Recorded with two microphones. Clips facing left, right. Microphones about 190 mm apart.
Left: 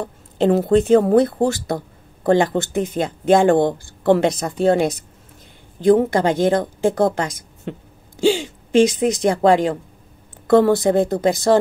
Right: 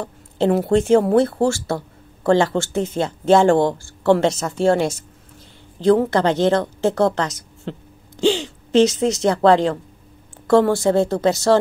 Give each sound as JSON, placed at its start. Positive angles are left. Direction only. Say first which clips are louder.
{"t": 0.0, "sound": "a woman's voice", "louder": "left 1 dB", "side_deg": 20}